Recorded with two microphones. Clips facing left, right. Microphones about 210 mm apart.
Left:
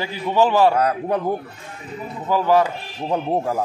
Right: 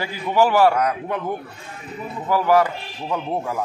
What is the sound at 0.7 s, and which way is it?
Speech, 35° left (ahead or behind).